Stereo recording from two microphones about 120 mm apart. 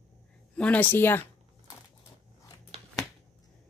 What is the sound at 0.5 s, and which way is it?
Speech, 15° left (ahead or behind).